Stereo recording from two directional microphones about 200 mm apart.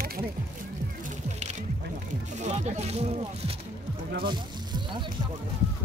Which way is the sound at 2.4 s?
35° right (ahead or behind).